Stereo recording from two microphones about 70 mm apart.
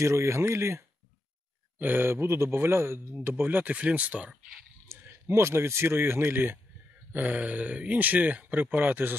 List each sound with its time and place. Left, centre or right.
0.0 s speech: right
1.8 s speech: right
4.3 s speech: centre
4.8 s a sound: right
5.3 s speech: right